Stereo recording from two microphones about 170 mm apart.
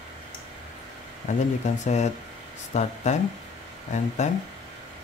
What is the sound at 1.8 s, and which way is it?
Speech, 40° left (ahead or behind).